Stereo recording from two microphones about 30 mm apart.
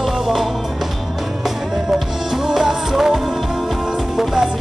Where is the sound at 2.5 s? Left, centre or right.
Centre.